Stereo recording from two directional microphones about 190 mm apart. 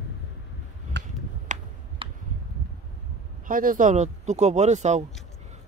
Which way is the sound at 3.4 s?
45° right (ahead or behind).